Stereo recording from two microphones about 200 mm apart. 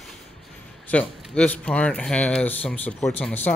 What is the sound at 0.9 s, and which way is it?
Speech, 5° left (ahead or behind).